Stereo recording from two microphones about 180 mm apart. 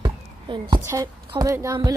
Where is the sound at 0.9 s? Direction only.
15° right (ahead or behind).